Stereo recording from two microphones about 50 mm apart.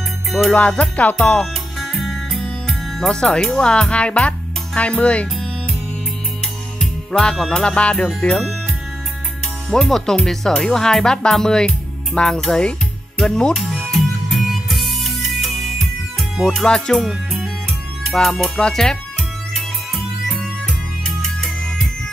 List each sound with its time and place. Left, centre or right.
0.5 s music: centre
1.8 s music: centre
2.9 s speech: centre
3.5 s music: centre
6.8 s music: centre
7.6 s music: left
9.7 s speech: centre
13.6 s music: centre
16.6 s music: centre
18.1 s speech: centre
19.5 s music: centre